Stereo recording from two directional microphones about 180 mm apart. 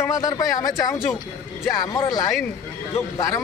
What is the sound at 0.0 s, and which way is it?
Speech, 20° left (ahead or behind).